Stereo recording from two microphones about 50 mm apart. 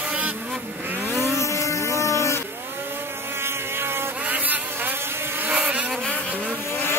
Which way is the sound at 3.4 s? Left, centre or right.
Right.